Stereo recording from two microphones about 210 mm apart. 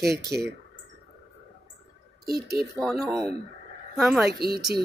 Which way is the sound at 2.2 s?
45° right (ahead or behind).